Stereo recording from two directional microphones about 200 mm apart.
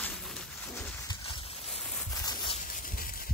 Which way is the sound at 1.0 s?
25° left (ahead or behind).